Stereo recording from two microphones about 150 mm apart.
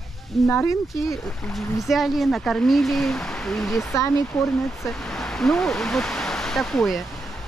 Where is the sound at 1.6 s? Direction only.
Centre (ahead or behind).